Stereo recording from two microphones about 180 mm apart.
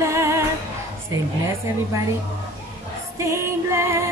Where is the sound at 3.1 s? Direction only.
15° right (ahead or behind).